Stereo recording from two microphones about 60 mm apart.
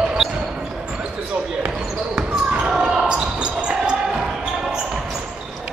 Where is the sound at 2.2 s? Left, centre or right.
Centre.